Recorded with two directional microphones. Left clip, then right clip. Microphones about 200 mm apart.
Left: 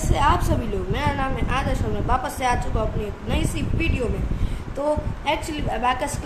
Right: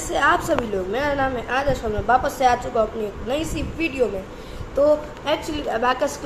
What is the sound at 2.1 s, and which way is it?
A woman's voice, centre (ahead or behind).